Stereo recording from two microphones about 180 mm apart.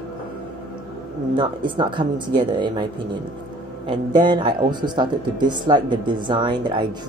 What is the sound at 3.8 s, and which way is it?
Speech, 25° right (ahead or behind).